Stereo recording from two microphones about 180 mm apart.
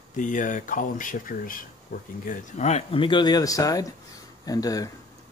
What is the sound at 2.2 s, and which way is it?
Speech, 40° left (ahead or behind).